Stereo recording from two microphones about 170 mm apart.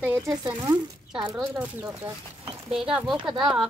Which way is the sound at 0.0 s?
10° right (ahead or behind).